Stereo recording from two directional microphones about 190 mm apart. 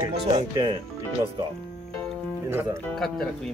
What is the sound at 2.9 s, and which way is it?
Speech, 5° left (ahead or behind).